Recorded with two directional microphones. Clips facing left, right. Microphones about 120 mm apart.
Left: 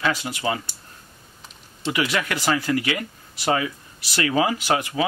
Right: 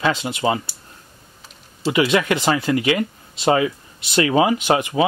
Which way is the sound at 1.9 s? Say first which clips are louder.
Right 7 dB; 20° right (ahead or behind).